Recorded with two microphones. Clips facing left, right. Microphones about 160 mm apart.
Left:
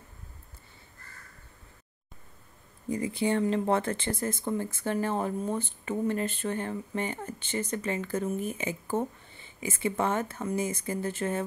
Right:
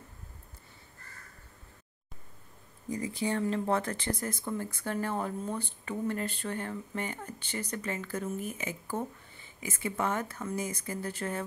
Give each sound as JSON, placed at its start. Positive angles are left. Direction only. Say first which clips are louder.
{"t": 3.2, "sound": "speech", "louder": "left 4 dB", "side_deg": 30}